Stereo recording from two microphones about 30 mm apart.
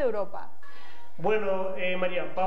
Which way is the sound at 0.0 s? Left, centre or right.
Centre.